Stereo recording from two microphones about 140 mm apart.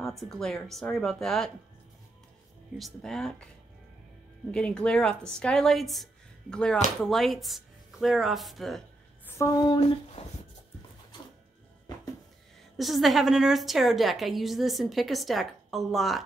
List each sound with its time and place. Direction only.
0.2 s a woman's voice: 5° left (ahead or behind)
2.8 s a woman's voice: 5° left (ahead or behind)
4.5 s a woman's voice: 5° left (ahead or behind)
9.2 s a woman's voice: 25° left (ahead or behind)
12.7 s a woman's voice: centre (ahead or behind)